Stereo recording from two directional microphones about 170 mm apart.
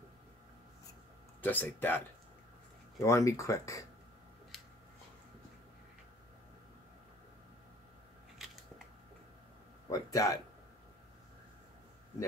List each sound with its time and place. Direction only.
1.4 s speech: 10° left (ahead or behind)
8.4 s biting: centre (ahead or behind)
9.8 s a sound: 20° left (ahead or behind)